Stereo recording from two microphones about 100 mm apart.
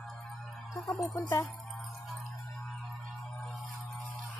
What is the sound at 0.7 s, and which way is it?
Music, 30° left (ahead or behind).